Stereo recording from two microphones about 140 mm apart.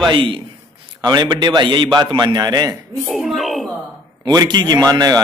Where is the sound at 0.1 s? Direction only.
35° right (ahead or behind).